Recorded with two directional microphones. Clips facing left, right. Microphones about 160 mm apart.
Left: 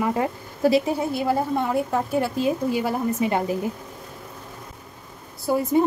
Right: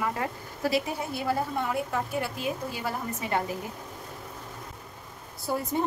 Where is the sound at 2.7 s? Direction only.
20° left (ahead or behind).